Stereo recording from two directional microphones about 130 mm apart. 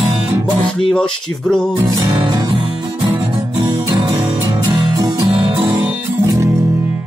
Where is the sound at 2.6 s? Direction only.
45° right (ahead or behind).